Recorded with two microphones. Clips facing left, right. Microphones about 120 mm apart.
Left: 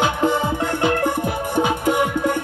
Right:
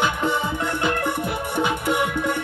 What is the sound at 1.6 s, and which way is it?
Music, 45° left (ahead or behind).